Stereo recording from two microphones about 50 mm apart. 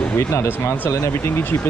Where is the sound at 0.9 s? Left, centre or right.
Left.